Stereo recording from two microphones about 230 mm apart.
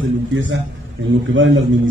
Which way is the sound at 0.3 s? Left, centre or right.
Right.